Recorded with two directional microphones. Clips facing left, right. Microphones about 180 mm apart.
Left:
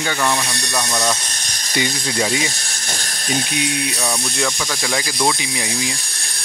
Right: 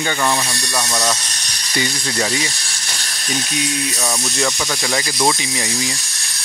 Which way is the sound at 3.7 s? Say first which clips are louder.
Even; 60° left (ahead or behind).